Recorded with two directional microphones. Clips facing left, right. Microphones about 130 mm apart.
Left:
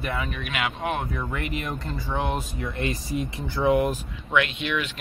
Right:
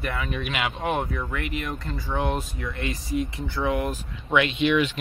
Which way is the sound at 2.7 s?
35° left (ahead or behind).